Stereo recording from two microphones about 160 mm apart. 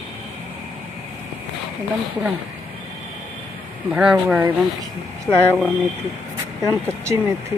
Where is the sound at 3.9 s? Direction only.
5° right (ahead or behind).